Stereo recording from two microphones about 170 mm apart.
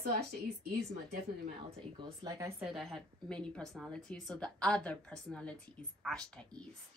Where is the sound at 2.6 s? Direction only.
Centre (ahead or behind).